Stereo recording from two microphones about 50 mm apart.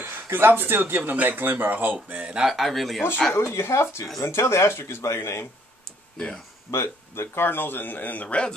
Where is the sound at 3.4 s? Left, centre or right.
Left.